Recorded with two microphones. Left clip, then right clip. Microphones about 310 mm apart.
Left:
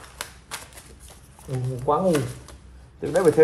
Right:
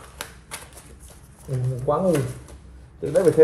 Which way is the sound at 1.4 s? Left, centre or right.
Centre.